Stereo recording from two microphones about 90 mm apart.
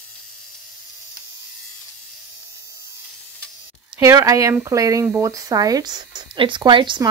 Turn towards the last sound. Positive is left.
turn(degrees=-60)  # may be behind; listen again after turning